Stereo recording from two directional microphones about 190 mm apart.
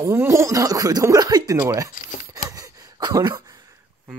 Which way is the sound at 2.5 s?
20° right (ahead or behind).